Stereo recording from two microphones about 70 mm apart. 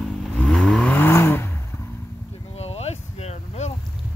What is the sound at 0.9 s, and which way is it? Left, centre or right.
Vehicle, left.